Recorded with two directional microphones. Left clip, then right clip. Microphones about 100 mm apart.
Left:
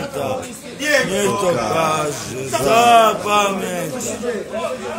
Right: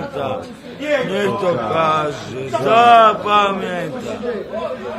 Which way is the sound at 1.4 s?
40° left (ahead or behind).